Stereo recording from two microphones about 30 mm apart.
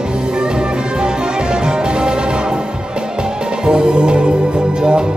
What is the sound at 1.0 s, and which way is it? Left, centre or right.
Music, right.